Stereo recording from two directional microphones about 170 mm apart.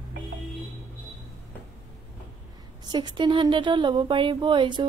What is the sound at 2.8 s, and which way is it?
Speech, 25° right (ahead or behind).